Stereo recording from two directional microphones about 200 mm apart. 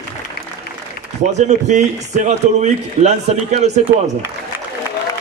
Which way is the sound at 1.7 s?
35° right (ahead or behind).